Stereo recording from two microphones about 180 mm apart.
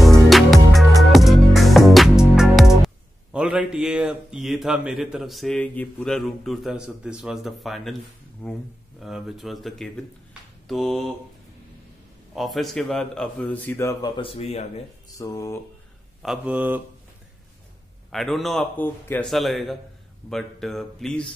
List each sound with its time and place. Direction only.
0.0 s music: centre (ahead or behind)
2.3 s a man's voice: 5° right (ahead or behind)
12.4 s speech: centre (ahead or behind); by 14.7 s 35° left (ahead or behind)
15.1 s speech: 20° left (ahead or behind)
16.2 s speech: 5° right (ahead or behind)
18.1 s a man's voice: centre (ahead or behind)
19.2 s a man's voice: centre (ahead or behind)